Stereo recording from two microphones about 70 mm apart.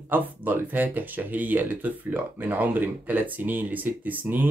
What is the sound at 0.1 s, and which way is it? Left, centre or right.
Speech, right.